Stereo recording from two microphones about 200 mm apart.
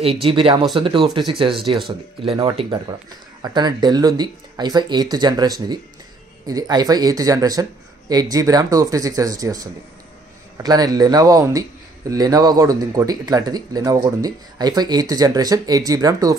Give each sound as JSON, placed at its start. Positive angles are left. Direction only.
{"t": 0.0, "sound": "speech", "side_deg": -30}